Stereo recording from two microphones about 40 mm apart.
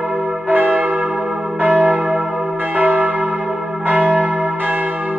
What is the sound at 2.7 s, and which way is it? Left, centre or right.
Church bell, right.